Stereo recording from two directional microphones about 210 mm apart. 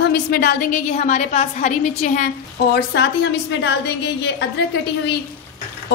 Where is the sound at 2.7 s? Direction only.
55° left (ahead or behind).